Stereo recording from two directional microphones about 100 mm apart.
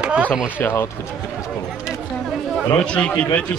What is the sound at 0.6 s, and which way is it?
Speech, 25° left (ahead or behind).